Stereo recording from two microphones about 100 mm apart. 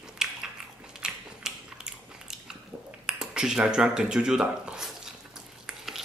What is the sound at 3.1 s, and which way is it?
Speech, 5° right (ahead or behind).